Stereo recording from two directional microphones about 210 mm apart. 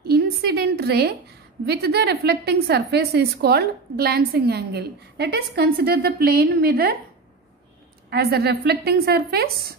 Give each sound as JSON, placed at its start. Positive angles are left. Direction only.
{"t": 0.0, "sound": "a sound", "side_deg": -50}
{"t": 1.7, "sound": "a woman's voice", "side_deg": -50}
{"t": 8.1, "sound": "a woman's voice", "side_deg": -50}